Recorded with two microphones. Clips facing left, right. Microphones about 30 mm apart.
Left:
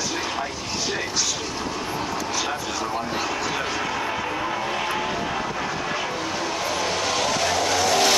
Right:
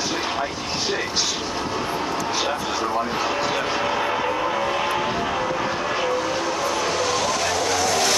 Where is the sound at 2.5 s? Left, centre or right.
Centre.